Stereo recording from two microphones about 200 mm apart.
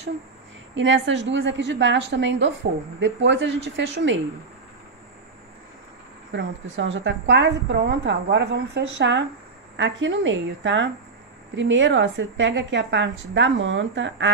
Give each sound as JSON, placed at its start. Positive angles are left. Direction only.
{"t": 0.7, "sound": "a woman's voice", "side_deg": -65}
{"t": 6.3, "sound": "a woman's voice", "side_deg": -70}